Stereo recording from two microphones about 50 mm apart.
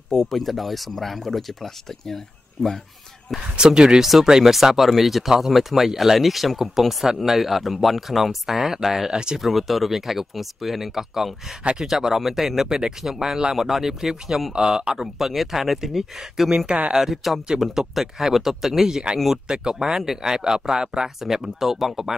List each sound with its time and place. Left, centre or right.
0.1 s speech: centre
3.5 s speech: centre
16.5 s speech: centre
16.9 s speech: centre